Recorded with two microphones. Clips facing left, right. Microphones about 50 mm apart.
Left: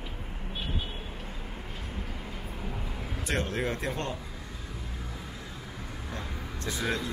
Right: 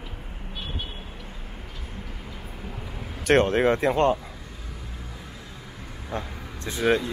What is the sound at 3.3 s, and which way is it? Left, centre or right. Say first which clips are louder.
Speech: right 12 dB; right.